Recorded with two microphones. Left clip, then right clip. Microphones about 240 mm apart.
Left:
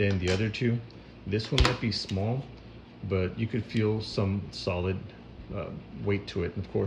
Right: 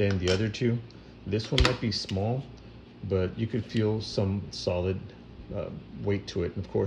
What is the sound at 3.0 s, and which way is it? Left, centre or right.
Speech, centre.